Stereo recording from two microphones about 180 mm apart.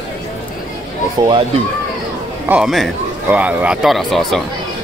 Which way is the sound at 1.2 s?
25° right (ahead or behind).